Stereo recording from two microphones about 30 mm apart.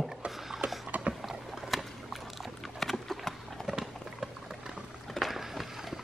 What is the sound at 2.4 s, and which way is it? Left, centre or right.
Dog, centre.